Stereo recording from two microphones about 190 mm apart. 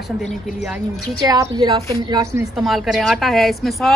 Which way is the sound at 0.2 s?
Centre (ahead or behind).